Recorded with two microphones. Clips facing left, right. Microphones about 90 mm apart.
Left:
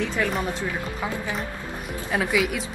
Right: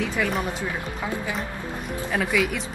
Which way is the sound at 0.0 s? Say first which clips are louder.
Even; 5° right (ahead or behind).